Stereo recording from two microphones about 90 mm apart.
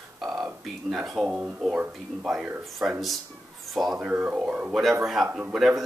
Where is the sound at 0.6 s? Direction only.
5° right (ahead or behind).